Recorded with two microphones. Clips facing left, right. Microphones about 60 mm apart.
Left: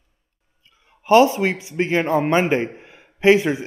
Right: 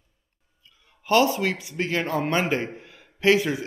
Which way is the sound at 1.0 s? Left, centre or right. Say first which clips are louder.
Left 6 dB; left.